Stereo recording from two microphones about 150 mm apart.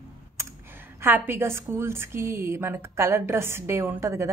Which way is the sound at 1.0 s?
15° right (ahead or behind).